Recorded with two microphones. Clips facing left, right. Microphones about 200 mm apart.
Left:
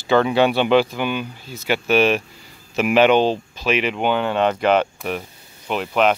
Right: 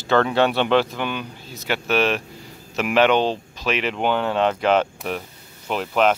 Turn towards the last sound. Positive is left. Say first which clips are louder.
# left 1 dB
turn(degrees=5)  # may be behind; listen again after turning